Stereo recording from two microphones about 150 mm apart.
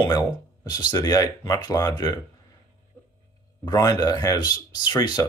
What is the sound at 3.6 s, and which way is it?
Speech, 25° left (ahead or behind).